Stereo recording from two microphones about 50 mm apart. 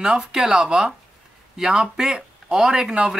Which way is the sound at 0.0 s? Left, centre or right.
Centre.